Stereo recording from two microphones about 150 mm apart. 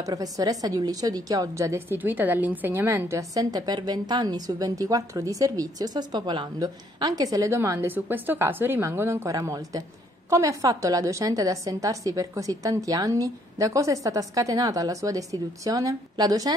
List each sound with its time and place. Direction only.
0.0 s a woman's voice: 25° right (ahead or behind)